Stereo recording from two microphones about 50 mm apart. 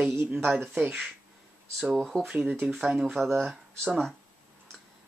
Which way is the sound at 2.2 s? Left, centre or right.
Right.